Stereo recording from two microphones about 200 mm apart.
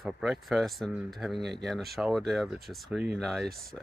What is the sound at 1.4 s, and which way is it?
Speech, 55° right (ahead or behind).